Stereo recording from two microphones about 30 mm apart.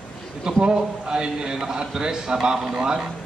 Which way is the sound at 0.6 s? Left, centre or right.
Right.